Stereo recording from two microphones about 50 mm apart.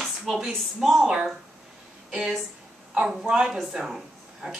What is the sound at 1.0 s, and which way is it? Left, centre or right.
A woman's voice, right.